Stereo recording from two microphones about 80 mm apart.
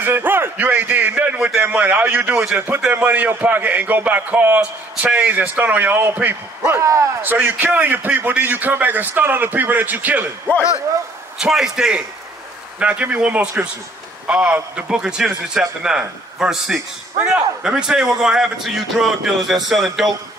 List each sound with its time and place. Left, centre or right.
0.0 s a man's voice: right
6.8 s a man's voice: right
7.2 s a man's voice: right
11.3 s a man's voice: centre